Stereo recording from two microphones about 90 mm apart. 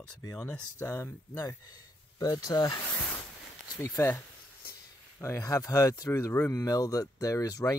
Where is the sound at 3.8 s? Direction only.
30° left (ahead or behind).